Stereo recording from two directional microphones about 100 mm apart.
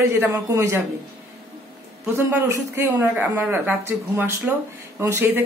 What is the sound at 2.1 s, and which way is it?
A woman's voice, 25° right (ahead or behind).